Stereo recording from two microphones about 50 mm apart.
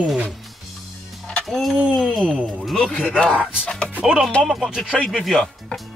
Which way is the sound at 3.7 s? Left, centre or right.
Centre.